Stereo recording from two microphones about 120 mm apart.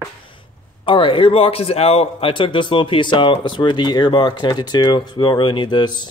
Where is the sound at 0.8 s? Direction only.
45° left (ahead or behind).